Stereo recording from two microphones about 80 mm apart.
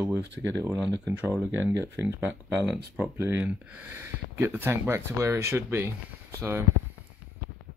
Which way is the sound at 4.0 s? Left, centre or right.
Right.